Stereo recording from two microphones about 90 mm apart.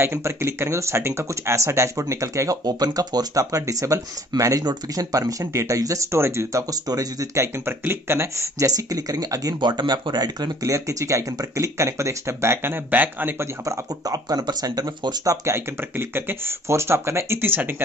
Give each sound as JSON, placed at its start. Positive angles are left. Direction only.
{"t": 0.0, "sound": "speech", "side_deg": -30}
{"t": 6.7, "sound": "speech", "side_deg": -45}
{"t": 7.5, "sound": "speech", "side_deg": -25}
{"t": 9.6, "sound": "speech", "side_deg": -55}
{"t": 13.7, "sound": "speech", "side_deg": -45}
{"t": 15.4, "sound": "speech", "side_deg": -25}